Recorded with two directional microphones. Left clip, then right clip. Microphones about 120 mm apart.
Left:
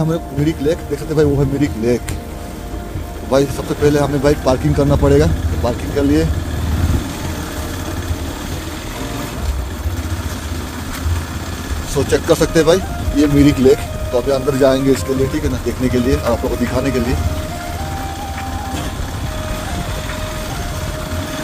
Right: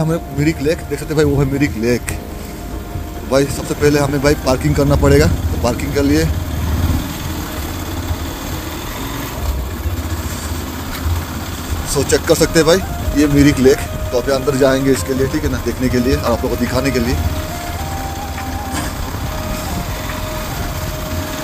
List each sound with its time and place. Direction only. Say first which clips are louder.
0.0 s a man's voice: right 1 dB; 15° left (ahead or behind)
3.3 s a man's voice: even; 20° left (ahead or behind)
11.9 s speech: right 1 dB; 15° left (ahead or behind)